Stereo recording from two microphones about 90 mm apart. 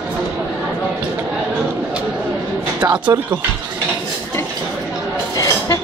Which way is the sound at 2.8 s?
55° right (ahead or behind).